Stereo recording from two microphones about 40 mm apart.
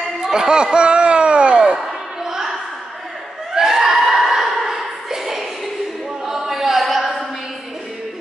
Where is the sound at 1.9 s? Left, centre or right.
Centre.